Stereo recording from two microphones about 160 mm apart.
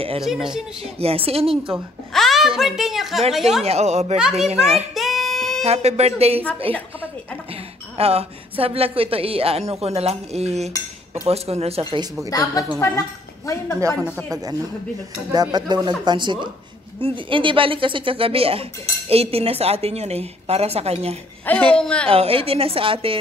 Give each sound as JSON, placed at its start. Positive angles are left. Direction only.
{"t": 0.2, "sound": "a woman's voice", "side_deg": -5}
{"t": 0.8, "sound": "a woman's voice", "side_deg": -40}
{"t": 2.1, "sound": "a woman's voice", "side_deg": 0}
{"t": 3.6, "sound": "a woman's voice", "side_deg": -40}
{"t": 4.2, "sound": "a woman's voice", "side_deg": 0}
{"t": 4.5, "sound": "a woman's voice", "side_deg": -40}
{"t": 4.9, "sound": "a sound", "side_deg": 0}
{"t": 5.6, "sound": "a woman's voice", "side_deg": -40}
{"t": 8.0, "sound": "a woman's voice", "side_deg": -40}
{"t": 11.9, "sound": "speech", "side_deg": -25}
{"t": 12.3, "sound": "a woman's voice", "side_deg": 20}
{"t": 15.5, "sound": "a woman's voice", "side_deg": -25}
{"t": 21.5, "sound": "a woman's voice", "side_deg": 5}
{"t": 22.1, "sound": "a woman's voice", "side_deg": -35}